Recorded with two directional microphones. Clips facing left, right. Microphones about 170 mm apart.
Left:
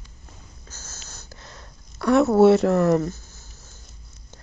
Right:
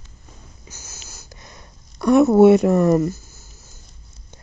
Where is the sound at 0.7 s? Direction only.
15° right (ahead or behind).